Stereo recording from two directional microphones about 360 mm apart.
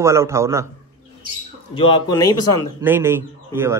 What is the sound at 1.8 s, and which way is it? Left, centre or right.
Speech, centre.